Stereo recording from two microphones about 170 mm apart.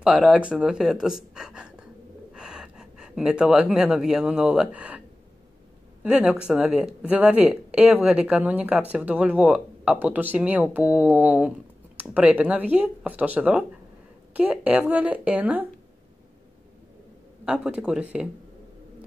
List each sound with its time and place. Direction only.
0.3 s speech: 5° right (ahead or behind)
6.0 s speech: 5° right (ahead or behind)
17.5 s speech: 5° right (ahead or behind)